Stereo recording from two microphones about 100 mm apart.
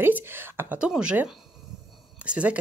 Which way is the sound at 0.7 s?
10° right (ahead or behind).